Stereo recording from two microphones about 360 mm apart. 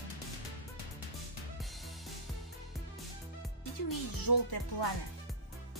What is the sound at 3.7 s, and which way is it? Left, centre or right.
Speech, left.